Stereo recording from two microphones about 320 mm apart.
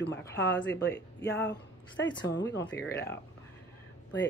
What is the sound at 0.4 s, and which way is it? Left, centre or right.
A woman's voice, left.